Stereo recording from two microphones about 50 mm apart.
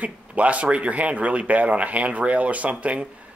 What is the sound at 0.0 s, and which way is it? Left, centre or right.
Speech, right.